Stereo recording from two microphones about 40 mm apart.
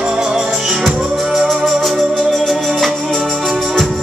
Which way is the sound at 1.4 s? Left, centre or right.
Centre.